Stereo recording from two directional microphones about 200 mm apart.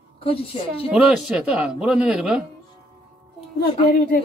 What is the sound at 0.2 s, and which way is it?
Speech, 25° left (ahead or behind).